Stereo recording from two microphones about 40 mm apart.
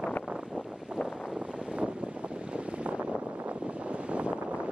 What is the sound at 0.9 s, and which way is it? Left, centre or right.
Boat, right.